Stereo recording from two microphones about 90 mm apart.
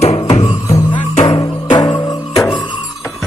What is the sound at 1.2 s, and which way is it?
Music, 50° left (ahead or behind).